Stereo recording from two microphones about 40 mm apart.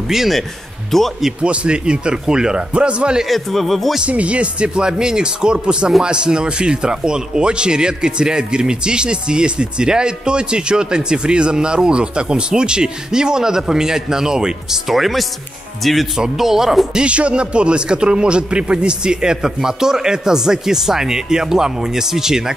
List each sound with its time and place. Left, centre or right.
0.1 s a man's voice: centre
0.9 s speech: centre
1.4 s speech: right
3.3 s speech: centre
4.0 s speech: right; by 16.1 s centre
16.3 s a man's voice: centre
16.9 s a man's voice: right; by 22.4 s centre